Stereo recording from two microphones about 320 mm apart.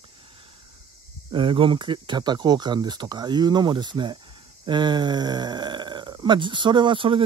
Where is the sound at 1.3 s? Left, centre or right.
Centre.